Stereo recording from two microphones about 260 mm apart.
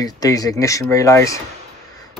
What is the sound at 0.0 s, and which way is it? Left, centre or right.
A man's voice, centre.